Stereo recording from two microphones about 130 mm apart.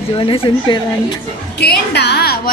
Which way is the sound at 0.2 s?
45° left (ahead or behind).